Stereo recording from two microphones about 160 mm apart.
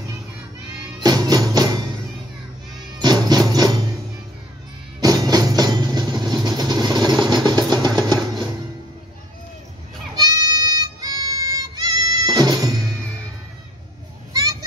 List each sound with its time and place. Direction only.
0.9 s music: 25° right (ahead or behind)
3.0 s music: 25° right (ahead or behind)
5.0 s vehicle: 25° right (ahead or behind)
10.1 s goat: 25° right (ahead or behind)